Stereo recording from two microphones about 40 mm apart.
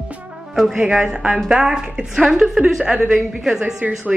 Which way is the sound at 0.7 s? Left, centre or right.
Right.